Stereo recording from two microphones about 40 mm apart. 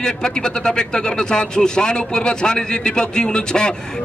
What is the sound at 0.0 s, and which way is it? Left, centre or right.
A man's voice, centre.